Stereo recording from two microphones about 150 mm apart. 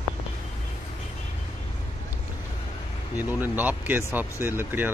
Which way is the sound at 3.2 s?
10° right (ahead or behind).